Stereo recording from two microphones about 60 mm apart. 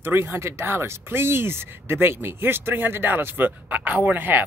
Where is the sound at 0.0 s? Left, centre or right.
Right.